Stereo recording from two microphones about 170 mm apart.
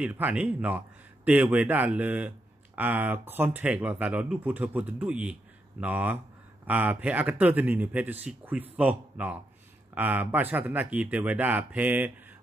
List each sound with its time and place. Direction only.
0.0 s a man's voice: 10° right (ahead or behind)